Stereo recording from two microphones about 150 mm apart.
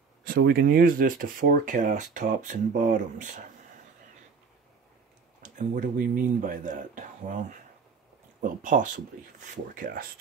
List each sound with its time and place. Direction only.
0.2 s speech: 90° right; by 3.4 s 55° right (ahead or behind)
5.4 s speech: 60° right (ahead or behind)
9.8 s speech: 70° right (ahead or behind)